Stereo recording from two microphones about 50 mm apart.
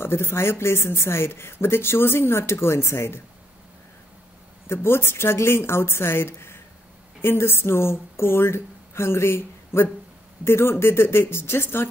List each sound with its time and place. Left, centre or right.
0.0 s speech: left
4.6 s speech: left